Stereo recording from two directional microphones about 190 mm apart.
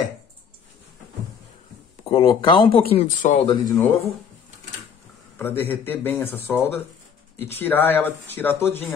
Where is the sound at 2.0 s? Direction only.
30° left (ahead or behind).